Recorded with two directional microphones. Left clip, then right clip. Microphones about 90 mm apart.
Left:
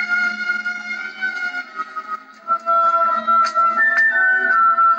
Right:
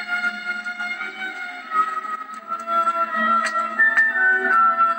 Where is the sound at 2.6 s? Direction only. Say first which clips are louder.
Left 5 dB; 30° right (ahead or behind).